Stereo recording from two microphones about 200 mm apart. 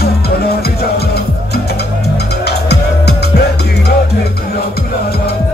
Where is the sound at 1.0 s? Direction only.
55° left (ahead or behind).